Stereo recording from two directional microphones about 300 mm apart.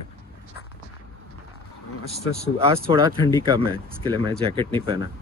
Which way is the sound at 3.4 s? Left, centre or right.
Centre.